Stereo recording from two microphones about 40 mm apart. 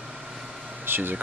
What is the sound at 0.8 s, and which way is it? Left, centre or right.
Air conditioning, right.